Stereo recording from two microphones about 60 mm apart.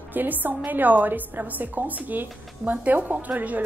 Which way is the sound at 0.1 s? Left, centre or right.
Right.